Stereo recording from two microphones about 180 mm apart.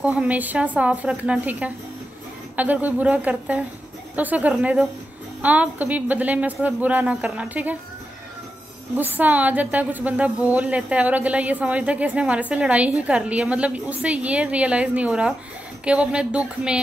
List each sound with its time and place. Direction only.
0.0 s a woman's voice: 5° right (ahead or behind)
8.9 s a woman's voice: 10° right (ahead or behind)